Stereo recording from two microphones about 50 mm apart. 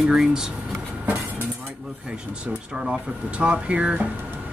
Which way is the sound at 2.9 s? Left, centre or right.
Right.